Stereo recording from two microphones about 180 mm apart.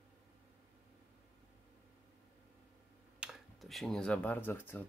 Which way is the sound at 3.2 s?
Centre (ahead or behind).